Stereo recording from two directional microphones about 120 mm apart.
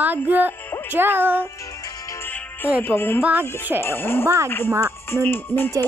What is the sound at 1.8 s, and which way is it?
Music, 25° left (ahead or behind).